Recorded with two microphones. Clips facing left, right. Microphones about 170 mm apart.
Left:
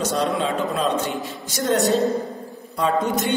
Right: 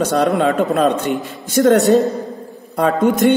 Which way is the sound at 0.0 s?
60° right (ahead or behind).